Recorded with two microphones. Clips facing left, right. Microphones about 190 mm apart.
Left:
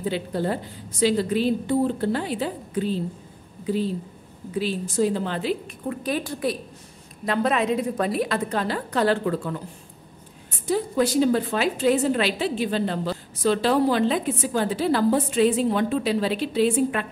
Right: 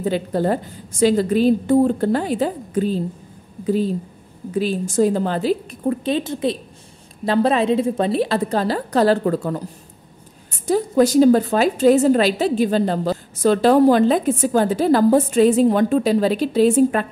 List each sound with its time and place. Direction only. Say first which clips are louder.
0.0 s a woman's voice: right 6 dB; 45° right (ahead or behind)
6.0 s a woman's voice: right 1 dB; 25° right (ahead or behind); by 9.6 s 40° right (ahead or behind)
10.7 s a woman's voice: right 6 dB; 40° right (ahead or behind)